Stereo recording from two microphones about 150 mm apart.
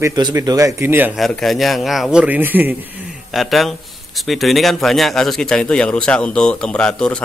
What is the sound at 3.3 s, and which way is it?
A man's voice, centre (ahead or behind).